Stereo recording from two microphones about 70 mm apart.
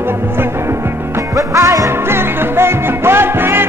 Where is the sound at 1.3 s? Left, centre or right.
Right.